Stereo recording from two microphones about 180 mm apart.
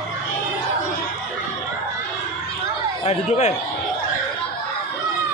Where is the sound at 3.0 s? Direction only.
35° left (ahead or behind).